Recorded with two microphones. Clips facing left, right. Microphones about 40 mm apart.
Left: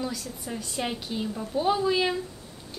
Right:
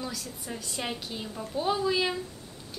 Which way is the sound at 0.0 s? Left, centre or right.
Centre.